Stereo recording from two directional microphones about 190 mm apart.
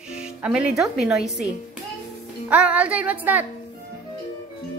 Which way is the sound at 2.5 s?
5° right (ahead or behind).